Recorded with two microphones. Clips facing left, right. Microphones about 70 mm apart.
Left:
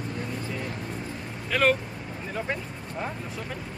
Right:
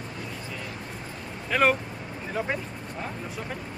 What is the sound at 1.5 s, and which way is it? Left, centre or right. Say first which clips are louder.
Speech: right 1 dB; centre.